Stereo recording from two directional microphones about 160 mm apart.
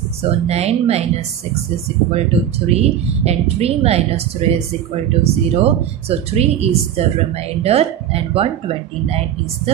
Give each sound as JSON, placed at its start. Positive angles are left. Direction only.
{"t": 0.2, "sound": "speech", "side_deg": -40}
{"t": 2.1, "sound": "speech", "side_deg": -40}